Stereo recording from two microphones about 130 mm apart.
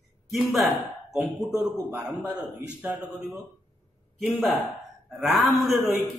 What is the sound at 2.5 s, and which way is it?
Speech, 15° right (ahead or behind).